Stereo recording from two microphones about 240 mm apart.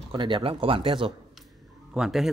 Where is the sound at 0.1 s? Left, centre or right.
Right.